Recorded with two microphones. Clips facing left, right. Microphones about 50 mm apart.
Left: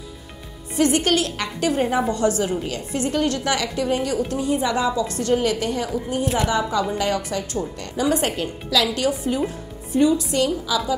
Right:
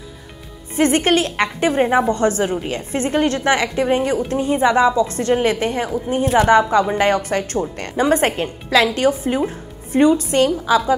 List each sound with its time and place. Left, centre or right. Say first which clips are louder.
0.7 s a woman's voice: right 3 dB; right